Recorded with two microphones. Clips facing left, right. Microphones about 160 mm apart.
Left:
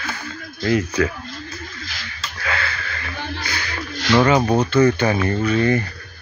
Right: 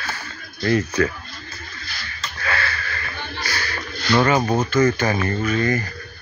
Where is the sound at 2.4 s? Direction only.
15° left (ahead or behind).